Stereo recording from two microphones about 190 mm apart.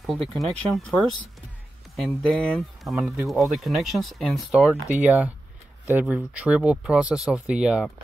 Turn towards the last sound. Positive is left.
turn(degrees=-5)  # may be behind; listen again after turning